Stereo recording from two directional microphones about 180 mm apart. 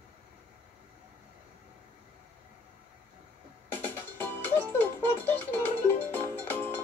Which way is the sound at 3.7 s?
10° left (ahead or behind).